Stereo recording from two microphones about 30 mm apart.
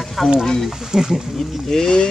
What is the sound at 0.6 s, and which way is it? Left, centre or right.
Speech, centre.